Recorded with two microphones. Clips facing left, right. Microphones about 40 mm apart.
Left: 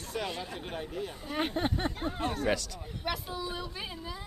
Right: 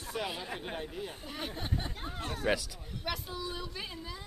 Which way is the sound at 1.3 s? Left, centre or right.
Left.